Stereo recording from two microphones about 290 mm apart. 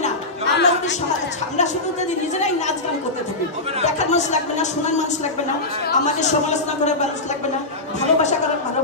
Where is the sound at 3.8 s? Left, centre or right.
Left.